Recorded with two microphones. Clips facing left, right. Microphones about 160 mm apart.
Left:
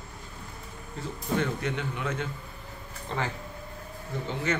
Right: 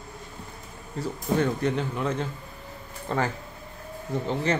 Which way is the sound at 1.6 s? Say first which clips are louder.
Right 5 dB; 35° right (ahead or behind).